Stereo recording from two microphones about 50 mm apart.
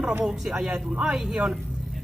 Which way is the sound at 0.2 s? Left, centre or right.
Centre.